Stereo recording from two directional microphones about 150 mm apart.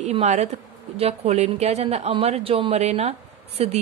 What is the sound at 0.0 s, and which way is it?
A woman's voice, 50° right (ahead or behind).